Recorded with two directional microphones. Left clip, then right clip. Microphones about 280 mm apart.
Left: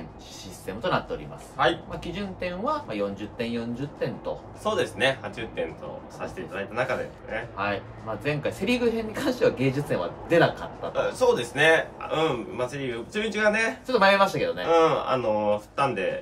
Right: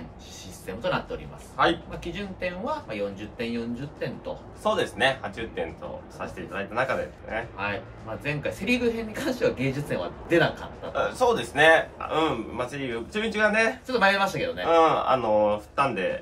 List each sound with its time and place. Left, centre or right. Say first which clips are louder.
0.7 s speech: left 1 dB; centre
4.6 s a man's voice: right 1 dB; centre
6.1 s a man's voice: left 1 dB; centre
7.5 s speech: left 2 dB; centre
11.0 s a man's voice: left 1 dB; centre
13.8 s speech: left 3 dB; centre
14.7 s a man's voice: right 2 dB; centre